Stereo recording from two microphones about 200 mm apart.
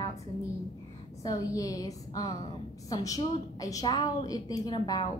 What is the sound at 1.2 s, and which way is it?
A woman's voice, 15° left (ahead or behind).